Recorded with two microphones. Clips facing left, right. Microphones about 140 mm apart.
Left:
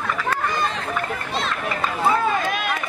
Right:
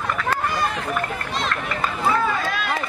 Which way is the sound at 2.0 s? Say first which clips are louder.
Left 2 dB; 20° left (ahead or behind).